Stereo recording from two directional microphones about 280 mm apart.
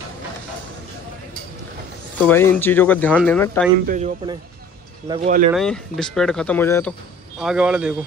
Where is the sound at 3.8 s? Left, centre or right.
Right.